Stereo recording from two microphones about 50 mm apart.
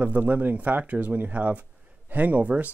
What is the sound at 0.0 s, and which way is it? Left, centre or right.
Speech, right.